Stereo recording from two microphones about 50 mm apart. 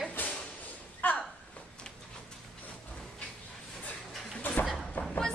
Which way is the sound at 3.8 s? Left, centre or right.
Left.